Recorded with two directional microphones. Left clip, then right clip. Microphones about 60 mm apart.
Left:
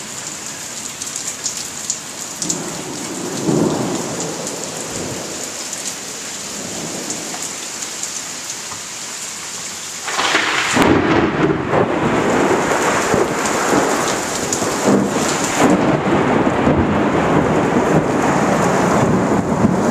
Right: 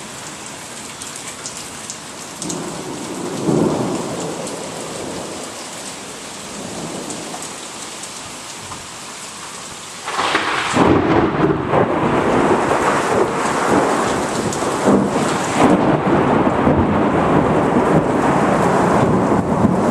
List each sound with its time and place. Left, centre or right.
3.3 s thunder: left
10.1 s thunder: left
11.7 s wind noise: centre
13.2 s thunder: centre